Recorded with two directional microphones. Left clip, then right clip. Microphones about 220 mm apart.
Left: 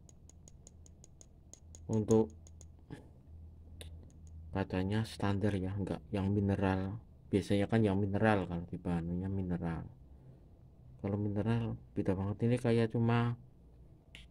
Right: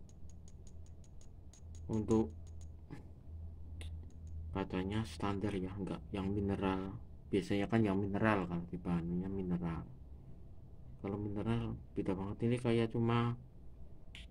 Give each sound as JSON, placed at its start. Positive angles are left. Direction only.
{"t": 4.5, "sound": "speech", "side_deg": 45}
{"t": 11.0, "sound": "speech", "side_deg": 45}